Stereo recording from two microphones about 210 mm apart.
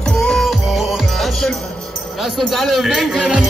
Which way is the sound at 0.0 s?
5° left (ahead or behind).